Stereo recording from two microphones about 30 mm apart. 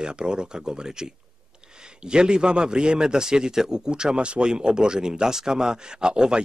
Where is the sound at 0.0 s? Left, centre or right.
Right.